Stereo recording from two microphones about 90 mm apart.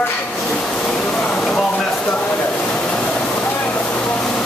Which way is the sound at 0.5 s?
10° left (ahead or behind).